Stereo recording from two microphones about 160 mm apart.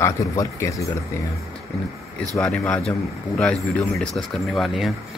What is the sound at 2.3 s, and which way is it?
Speech, 5° left (ahead or behind).